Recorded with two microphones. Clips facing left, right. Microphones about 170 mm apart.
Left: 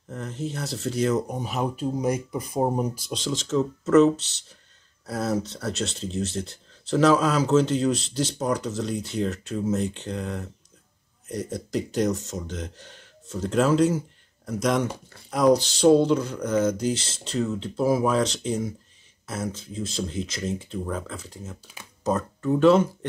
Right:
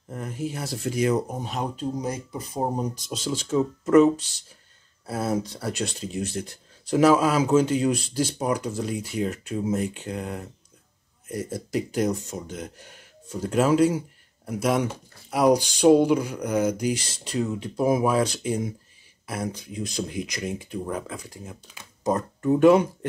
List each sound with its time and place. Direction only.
0.1 s speech: 10° right (ahead or behind)
1.8 s speech: 10° left (ahead or behind)
3.1 s speech: 5° right (ahead or behind)